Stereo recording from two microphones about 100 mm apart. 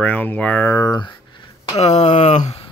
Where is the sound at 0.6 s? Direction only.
30° left (ahead or behind).